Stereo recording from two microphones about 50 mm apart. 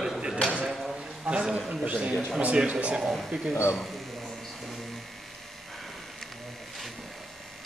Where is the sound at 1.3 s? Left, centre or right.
Right.